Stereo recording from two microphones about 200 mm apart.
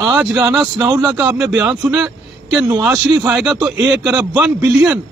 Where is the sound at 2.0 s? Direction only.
20° right (ahead or behind).